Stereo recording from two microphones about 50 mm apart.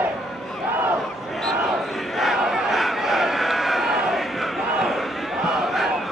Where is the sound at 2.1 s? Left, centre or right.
Centre.